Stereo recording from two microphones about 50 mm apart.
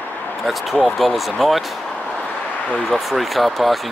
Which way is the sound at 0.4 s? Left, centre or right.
Centre.